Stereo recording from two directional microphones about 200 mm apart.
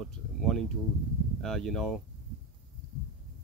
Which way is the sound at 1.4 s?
Centre (ahead or behind).